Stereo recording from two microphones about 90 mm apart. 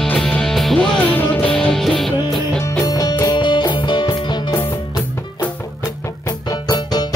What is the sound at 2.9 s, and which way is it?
Music, 45° left (ahead or behind).